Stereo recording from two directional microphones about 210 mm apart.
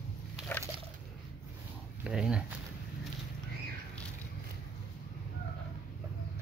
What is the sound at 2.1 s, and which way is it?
Speech, 5° right (ahead or behind).